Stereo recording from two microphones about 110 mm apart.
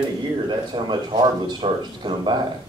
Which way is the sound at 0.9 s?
45° right (ahead or behind).